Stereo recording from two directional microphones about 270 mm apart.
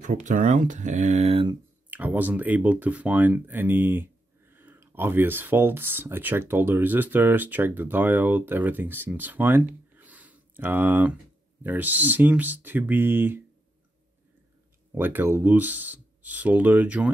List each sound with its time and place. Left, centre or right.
0.0 s speech: right
1.9 s speech: centre
15.0 s speech: centre